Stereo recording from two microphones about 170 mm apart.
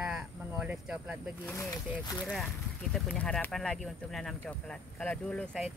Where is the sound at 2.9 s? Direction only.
5° left (ahead or behind).